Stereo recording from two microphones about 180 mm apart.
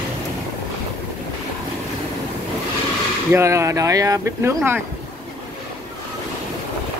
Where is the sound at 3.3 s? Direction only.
15° right (ahead or behind).